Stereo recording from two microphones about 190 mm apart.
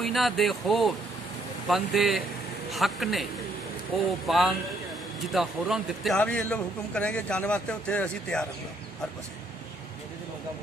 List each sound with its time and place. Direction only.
0.0 s a man's voice: centre (ahead or behind)